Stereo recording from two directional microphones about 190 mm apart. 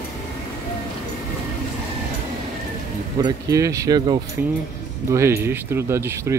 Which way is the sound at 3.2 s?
15° right (ahead or behind).